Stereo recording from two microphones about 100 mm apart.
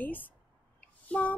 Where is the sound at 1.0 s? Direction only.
15° left (ahead or behind).